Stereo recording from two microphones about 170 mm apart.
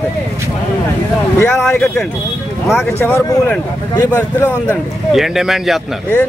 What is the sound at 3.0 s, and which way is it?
Speech, 15° left (ahead or behind).